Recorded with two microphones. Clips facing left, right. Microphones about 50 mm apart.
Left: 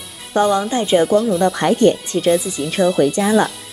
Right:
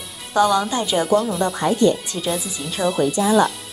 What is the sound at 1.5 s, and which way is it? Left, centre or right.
Speech, left.